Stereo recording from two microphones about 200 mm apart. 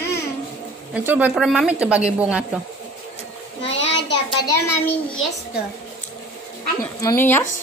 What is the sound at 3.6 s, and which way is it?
Child singing, 65° left (ahead or behind).